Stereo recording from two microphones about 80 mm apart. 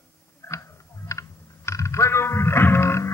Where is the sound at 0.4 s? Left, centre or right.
Left.